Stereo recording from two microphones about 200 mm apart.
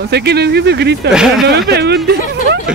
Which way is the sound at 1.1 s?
Centre (ahead or behind).